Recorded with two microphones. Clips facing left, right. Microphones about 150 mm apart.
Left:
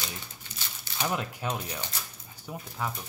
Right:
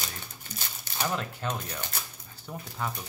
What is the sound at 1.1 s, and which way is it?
Speech, 10° left (ahead or behind).